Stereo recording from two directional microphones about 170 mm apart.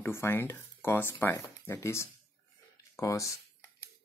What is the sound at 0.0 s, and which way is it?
Speech, 15° left (ahead or behind).